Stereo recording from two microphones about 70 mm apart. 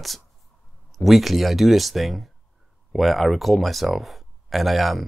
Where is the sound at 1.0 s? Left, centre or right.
Centre.